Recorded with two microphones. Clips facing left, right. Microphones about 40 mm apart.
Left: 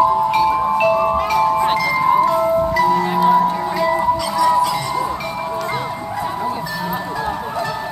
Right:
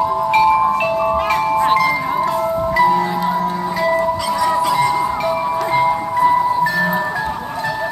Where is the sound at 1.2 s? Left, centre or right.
Right.